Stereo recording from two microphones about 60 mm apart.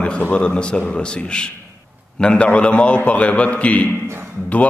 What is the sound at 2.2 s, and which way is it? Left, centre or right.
A man's voice, centre.